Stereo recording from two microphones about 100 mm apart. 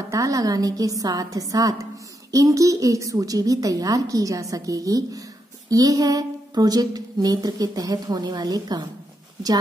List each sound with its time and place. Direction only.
0.1 s a woman's voice: 35° right (ahead or behind)